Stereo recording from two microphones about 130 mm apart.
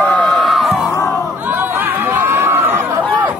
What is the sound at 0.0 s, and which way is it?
Crowd, 10° left (ahead or behind).